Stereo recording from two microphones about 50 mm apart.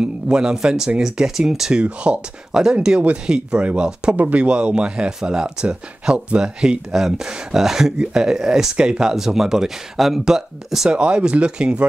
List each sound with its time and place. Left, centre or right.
0.0 s speech: centre
1.7 s speech: right
10.9 s speech: right